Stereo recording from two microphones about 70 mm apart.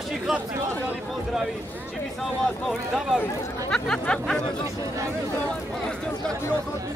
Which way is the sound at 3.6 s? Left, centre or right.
Centre.